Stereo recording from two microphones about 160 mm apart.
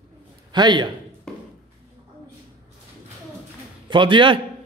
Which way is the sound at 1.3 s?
5° left (ahead or behind).